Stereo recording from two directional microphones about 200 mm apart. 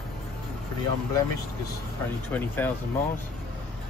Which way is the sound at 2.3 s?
10° left (ahead or behind).